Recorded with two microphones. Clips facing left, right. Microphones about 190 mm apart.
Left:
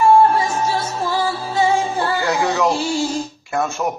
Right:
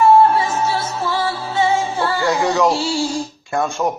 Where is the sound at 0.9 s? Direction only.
35° left (ahead or behind).